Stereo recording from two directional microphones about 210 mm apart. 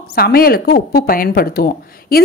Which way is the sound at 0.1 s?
45° left (ahead or behind).